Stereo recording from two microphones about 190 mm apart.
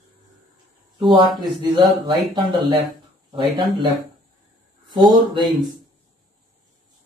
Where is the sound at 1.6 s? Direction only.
25° right (ahead or behind).